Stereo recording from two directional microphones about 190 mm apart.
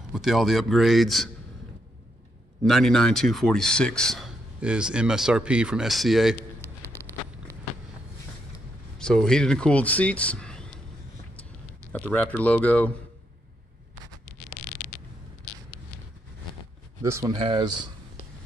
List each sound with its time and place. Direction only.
0.1 s speech: centre (ahead or behind)
2.6 s speech: centre (ahead or behind)
6.6 s a sound: 10° left (ahead or behind)
8.9 s speech: 5° left (ahead or behind)
11.9 s speech: 10° left (ahead or behind)
14.5 s a sound: 15° left (ahead or behind)
17.0 s speech: 15° right (ahead or behind)